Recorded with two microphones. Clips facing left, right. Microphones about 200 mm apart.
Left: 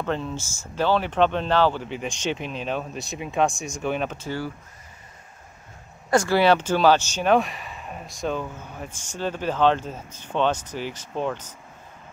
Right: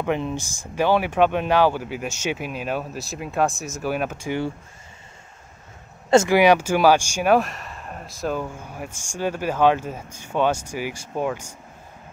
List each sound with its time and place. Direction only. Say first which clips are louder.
0.0 s speech: right 3 dB; 15° right (ahead or behind)
6.0 s speech: right 5 dB; 25° right (ahead or behind)
6.3 s speech: right 3 dB; 15° right (ahead or behind)